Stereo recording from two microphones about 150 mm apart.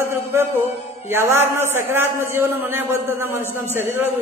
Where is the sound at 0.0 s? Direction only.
15° right (ahead or behind).